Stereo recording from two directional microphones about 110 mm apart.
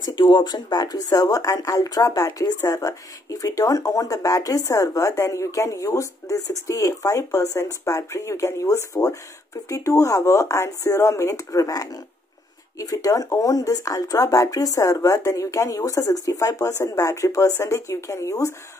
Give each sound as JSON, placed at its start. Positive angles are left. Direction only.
{"t": 0.0, "sound": "speech", "side_deg": 40}